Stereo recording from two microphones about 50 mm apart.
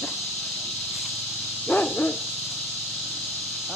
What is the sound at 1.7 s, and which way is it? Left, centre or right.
Dog, left.